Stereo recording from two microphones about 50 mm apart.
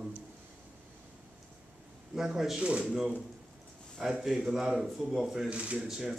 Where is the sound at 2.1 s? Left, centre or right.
Centre.